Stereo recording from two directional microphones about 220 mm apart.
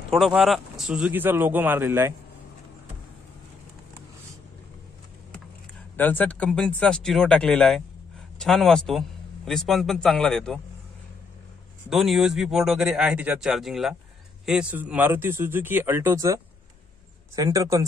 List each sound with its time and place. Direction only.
0.1 s speech: centre (ahead or behind)
5.9 s a man's voice: 10° left (ahead or behind)
11.9 s speech: centre (ahead or behind)
17.4 s speech: 15° right (ahead or behind)